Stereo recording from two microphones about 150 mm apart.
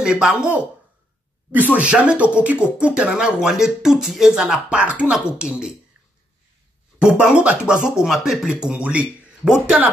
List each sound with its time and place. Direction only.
0.0 s speech: 5° right (ahead or behind)
7.0 s speech: 5° right (ahead or behind)